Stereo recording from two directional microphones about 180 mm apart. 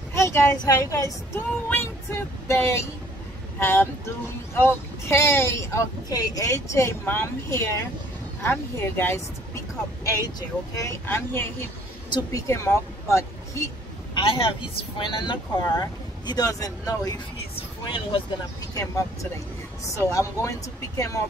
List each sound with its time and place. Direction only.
0.1 s a woman's voice: 15° left (ahead or behind)
10.8 s a woman's voice: 15° left (ahead or behind)
14.1 s speech: 30° left (ahead or behind)
18.8 s a woman's voice: 15° left (ahead or behind)